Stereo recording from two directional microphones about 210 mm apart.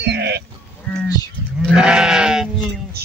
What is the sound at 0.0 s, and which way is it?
Sheep, 50° right (ahead or behind).